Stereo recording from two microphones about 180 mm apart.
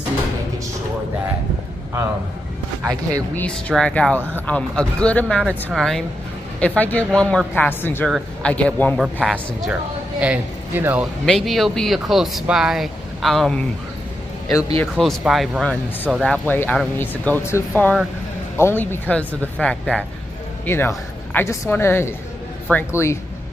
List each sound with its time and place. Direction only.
3.3 s speech: 5° left (ahead or behind); by 11.1 s 10° right (ahead or behind)
11.2 s speech: centre (ahead or behind)
14.8 s speech: centre (ahead or behind)
16.4 s speech: 10° left (ahead or behind)